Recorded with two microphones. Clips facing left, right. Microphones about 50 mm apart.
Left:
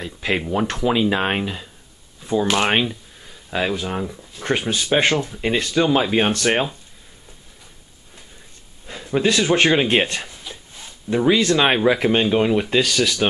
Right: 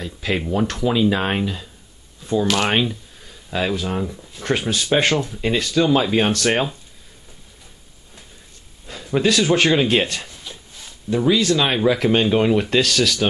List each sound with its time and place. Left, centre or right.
0.0 s speech: centre
2.8 s speech: centre
8.8 s a sound: centre
9.2 s speech: centre
12.1 s speech: centre